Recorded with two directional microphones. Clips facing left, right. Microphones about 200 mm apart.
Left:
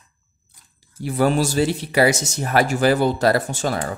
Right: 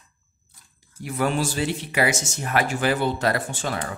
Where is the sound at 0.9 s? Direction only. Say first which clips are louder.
Left 5 dB; 30° left (ahead or behind).